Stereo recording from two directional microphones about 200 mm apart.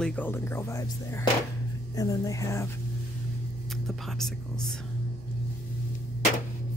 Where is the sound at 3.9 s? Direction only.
Centre (ahead or behind).